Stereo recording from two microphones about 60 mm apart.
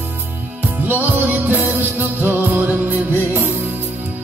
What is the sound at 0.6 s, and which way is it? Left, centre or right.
Music, right.